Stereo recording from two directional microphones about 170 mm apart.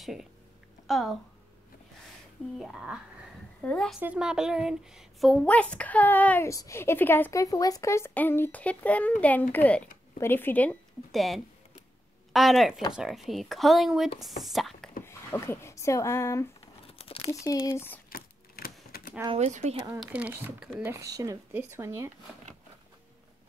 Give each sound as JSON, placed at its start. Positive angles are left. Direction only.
{"t": 0.0, "sound": "speech", "side_deg": 0}
{"t": 2.6, "sound": "speech", "side_deg": 0}
{"t": 4.0, "sound": "speech", "side_deg": -5}
{"t": 15.0, "sound": "speech", "side_deg": 15}
{"t": 17.0, "sound": "crumpling", "side_deg": 35}
{"t": 17.4, "sound": "speech", "side_deg": 20}
{"t": 18.9, "sound": "typing", "side_deg": 60}
{"t": 19.3, "sound": "speech", "side_deg": -40}
{"t": 20.0, "sound": "speech", "side_deg": -10}